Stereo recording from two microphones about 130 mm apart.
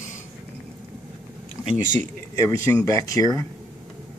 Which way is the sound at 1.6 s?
25° left (ahead or behind).